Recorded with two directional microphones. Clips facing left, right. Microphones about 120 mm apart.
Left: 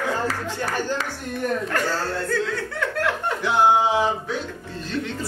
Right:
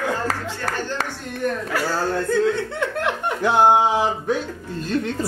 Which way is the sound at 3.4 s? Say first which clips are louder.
Right 3 dB; 45° right (ahead or behind).